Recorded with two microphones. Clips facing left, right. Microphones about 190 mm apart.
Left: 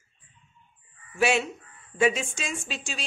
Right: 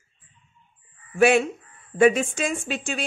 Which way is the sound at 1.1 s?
55° right (ahead or behind).